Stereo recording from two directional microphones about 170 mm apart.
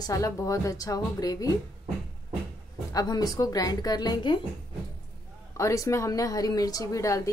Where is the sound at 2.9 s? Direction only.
20° left (ahead or behind).